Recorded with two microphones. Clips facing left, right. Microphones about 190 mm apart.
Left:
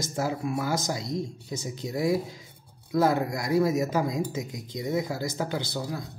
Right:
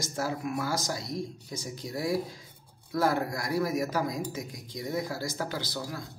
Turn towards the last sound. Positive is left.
turn(degrees=25)  # may be behind; listen again after turning